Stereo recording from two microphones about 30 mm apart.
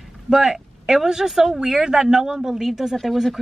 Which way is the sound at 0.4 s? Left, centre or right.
Centre.